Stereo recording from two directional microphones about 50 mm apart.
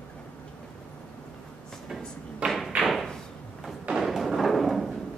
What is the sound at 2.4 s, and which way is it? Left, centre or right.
Thump, right.